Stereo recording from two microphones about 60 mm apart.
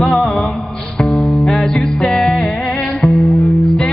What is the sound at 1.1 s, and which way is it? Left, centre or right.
Music, centre.